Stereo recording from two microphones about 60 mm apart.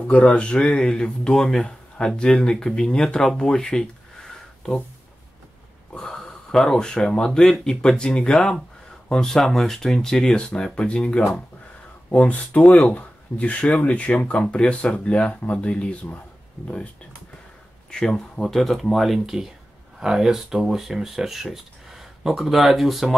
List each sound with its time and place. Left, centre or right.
0.1 s speech: centre
5.9 s speech: centre
17.9 s speech: centre